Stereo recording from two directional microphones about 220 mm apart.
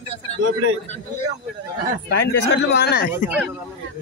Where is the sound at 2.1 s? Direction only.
50° left (ahead or behind).